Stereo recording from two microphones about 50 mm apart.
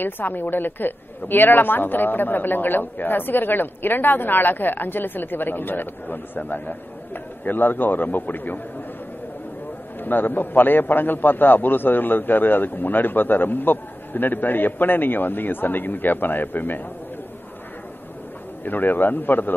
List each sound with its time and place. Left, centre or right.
0.0 s a man's voice: left
9.9 s a man's voice: left
18.6 s a man's voice: left